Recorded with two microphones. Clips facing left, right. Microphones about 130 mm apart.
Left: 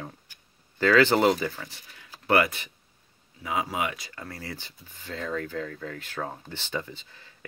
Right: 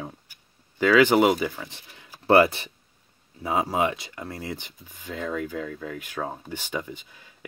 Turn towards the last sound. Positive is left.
turn(degrees=-15)  # may be behind; listen again after turning